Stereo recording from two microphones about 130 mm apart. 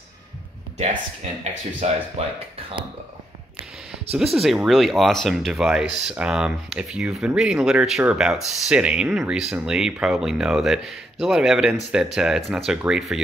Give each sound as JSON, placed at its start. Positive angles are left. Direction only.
{"t": 0.7, "sound": "speech", "side_deg": -60}
{"t": 2.2, "sound": "speech", "side_deg": -55}
{"t": 4.1, "sound": "speech", "side_deg": 0}